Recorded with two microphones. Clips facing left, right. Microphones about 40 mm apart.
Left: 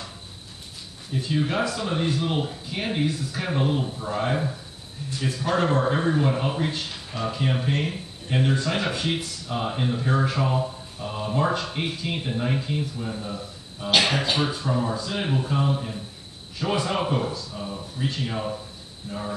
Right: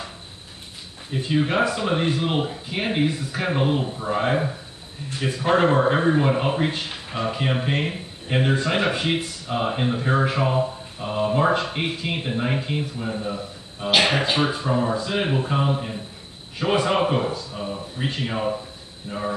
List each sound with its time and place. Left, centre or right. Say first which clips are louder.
1.1 s a man's voice: right 3 dB; right